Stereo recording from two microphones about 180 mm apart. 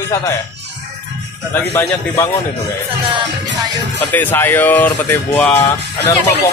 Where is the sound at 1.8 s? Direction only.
10° left (ahead or behind).